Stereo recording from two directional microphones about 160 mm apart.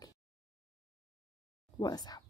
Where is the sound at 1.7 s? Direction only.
25° left (ahead or behind).